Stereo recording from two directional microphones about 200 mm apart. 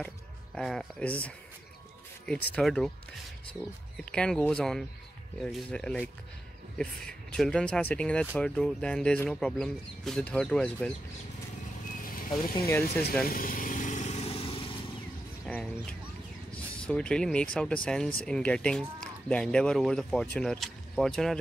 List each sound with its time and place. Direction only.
0.6 s speech: 5° left (ahead or behind)
3.9 s speech: 5° left (ahead or behind)
12.0 s vehicle: 45° left (ahead or behind)
12.5 s speech: 15° left (ahead or behind)
13.3 s vehicle: 45° left (ahead or behind); by 14.7 s 25° left (ahead or behind)
15.4 s speech: centre (ahead or behind)
16.5 s a sound: 5° left (ahead or behind)
17.8 s speech: 5° left (ahead or behind)